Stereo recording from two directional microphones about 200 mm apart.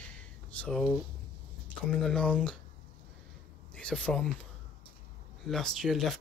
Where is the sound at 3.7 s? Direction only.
5° left (ahead or behind).